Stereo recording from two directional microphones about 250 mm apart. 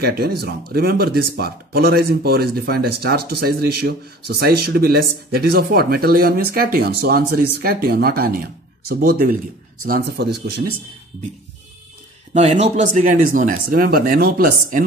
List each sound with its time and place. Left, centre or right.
0.0 s speech: right
12.4 s speech: right